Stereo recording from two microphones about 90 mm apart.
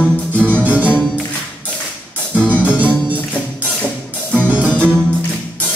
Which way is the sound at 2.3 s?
15° left (ahead or behind).